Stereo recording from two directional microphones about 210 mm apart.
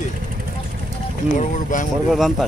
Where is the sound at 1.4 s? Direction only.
40° left (ahead or behind).